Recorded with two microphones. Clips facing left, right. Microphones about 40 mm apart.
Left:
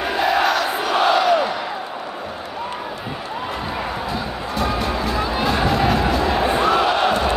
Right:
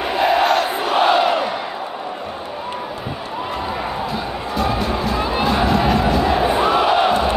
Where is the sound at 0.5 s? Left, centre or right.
Right.